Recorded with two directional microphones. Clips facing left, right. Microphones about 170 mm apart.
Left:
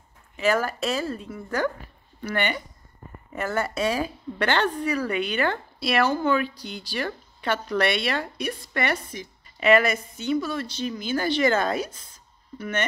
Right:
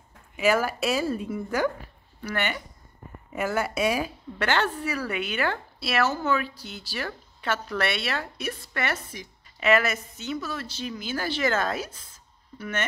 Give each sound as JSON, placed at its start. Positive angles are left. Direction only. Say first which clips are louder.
{"t": 0.4, "sound": "a woman's voice", "louder": "even", "side_deg": -5}